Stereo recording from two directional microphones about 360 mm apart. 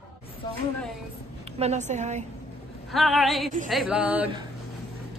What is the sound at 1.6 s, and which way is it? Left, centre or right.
Speech, centre.